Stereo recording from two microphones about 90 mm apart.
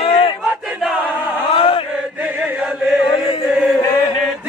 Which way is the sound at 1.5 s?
75° left (ahead or behind).